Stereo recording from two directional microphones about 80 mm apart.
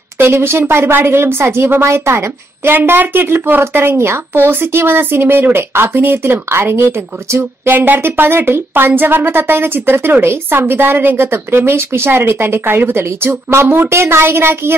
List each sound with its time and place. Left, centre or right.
0.2 s speech: right